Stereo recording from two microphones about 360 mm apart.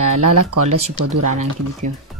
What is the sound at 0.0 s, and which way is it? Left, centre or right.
Speech, right.